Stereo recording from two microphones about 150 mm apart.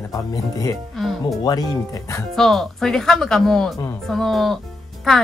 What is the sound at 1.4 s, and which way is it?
Speech, 25° left (ahead or behind).